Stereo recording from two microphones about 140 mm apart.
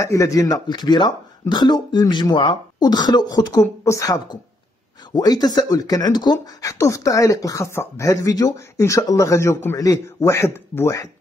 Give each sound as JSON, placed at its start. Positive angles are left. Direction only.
{"t": 0.0, "sound": "speech", "side_deg": 20}